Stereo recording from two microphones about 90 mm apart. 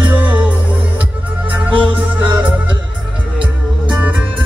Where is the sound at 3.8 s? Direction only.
10° right (ahead or behind).